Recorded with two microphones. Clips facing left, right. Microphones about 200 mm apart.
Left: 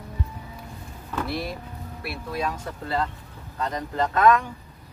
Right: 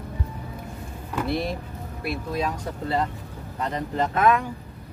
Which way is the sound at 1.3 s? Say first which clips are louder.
Right 4 dB; 25° right (ahead or behind).